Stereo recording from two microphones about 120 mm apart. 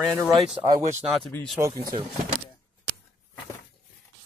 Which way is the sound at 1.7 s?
35° right (ahead or behind).